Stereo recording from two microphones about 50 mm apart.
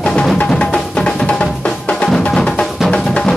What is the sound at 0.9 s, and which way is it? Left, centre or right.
Music, left.